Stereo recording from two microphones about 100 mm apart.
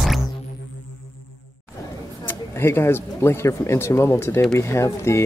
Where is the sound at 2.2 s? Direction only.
25° left (ahead or behind).